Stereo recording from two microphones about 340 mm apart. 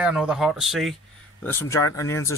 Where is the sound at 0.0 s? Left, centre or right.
Centre.